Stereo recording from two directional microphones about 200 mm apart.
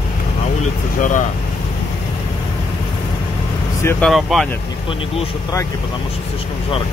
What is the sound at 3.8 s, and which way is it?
Speech, centre (ahead or behind).